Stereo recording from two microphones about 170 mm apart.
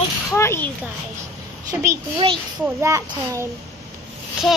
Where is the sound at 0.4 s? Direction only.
15° left (ahead or behind).